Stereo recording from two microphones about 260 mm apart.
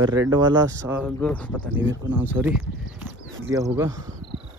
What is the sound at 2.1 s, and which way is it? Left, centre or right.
Speech, centre.